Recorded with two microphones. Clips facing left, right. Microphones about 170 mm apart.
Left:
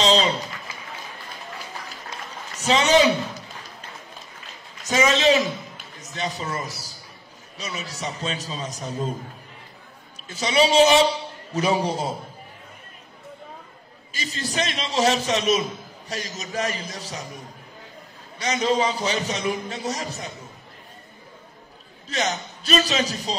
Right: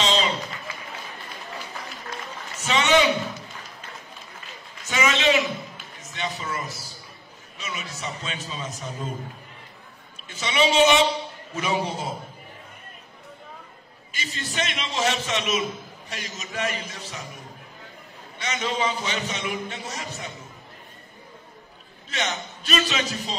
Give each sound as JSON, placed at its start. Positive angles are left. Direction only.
{"t": 0.0, "sound": "a sound", "side_deg": 35}
{"t": 2.5, "sound": "a man's voice", "side_deg": 35}
{"t": 4.8, "sound": "a man's voice", "side_deg": 40}
{"t": 10.2, "sound": "a man's voice", "side_deg": 35}
{"t": 14.1, "sound": "a man's voice", "side_deg": 40}
{"t": 18.4, "sound": "a man's voice", "side_deg": 40}
{"t": 22.1, "sound": "a man's voice", "side_deg": 40}